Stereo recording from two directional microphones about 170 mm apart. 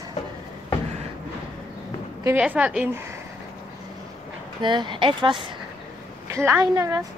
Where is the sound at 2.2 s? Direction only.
10° right (ahead or behind).